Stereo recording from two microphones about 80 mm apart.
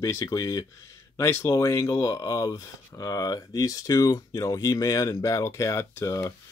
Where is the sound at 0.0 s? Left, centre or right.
Left.